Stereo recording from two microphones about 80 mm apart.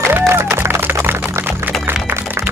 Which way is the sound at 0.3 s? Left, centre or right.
Right.